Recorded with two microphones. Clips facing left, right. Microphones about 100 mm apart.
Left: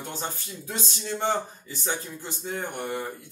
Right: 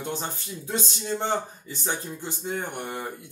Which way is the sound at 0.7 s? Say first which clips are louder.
Right 3 dB; 20° right (ahead or behind).